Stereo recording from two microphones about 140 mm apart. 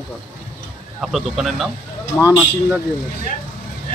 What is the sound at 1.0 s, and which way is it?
Speech, centre (ahead or behind).